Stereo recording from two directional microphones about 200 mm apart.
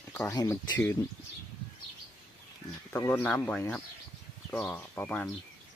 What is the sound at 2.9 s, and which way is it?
Speech, 10° left (ahead or behind).